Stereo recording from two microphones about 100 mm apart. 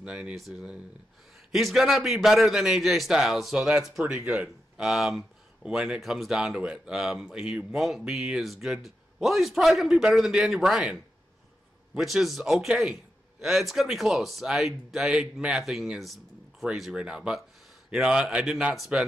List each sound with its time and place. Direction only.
0.0 s speech: 10° right (ahead or behind)
4.0 s speech: 20° right (ahead or behind)
4.7 s speech: 5° right (ahead or behind)